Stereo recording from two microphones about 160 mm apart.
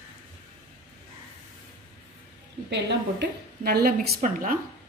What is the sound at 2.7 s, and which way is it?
A woman's voice, 90° right.